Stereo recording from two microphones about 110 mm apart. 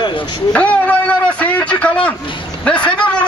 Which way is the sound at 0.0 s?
45° left (ahead or behind).